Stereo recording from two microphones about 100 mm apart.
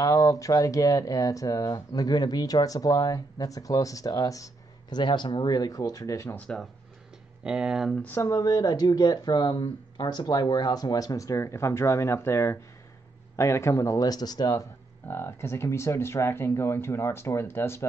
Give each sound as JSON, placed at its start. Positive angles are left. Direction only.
{"t": 0.0, "sound": "speech", "side_deg": 35}
{"t": 4.8, "sound": "speech", "side_deg": 50}
{"t": 6.2, "sound": "speech", "side_deg": 15}
{"t": 7.4, "sound": "speech", "side_deg": -10}
{"t": 8.0, "sound": "speech", "side_deg": 25}
{"t": 15.0, "sound": "speech", "side_deg": 25}